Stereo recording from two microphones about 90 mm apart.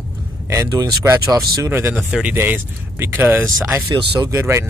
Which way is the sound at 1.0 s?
40° right (ahead or behind).